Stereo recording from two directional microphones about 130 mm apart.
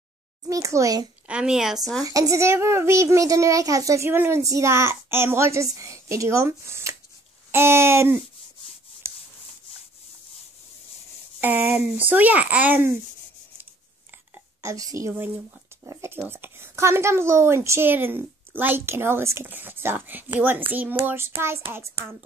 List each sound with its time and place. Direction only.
0.5 s a child's voice: 25° right (ahead or behind)
1.2 s a woman's voice: 10° right (ahead or behind)
2.0 s a child's voice: 25° right (ahead or behind)
11.4 s speech: 15° right (ahead or behind)
14.3 s speech: 25° right (ahead or behind)